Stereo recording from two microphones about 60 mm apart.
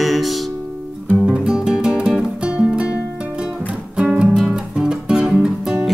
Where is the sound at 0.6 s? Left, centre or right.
Right.